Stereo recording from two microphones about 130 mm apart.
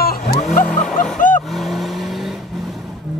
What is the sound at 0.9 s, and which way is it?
Vehicle, 85° left.